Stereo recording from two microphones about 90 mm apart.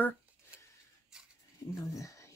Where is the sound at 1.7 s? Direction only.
40° left (ahead or behind).